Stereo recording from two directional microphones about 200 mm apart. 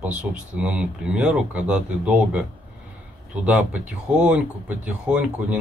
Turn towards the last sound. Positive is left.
turn(degrees=-5)  # may be behind; listen again after turning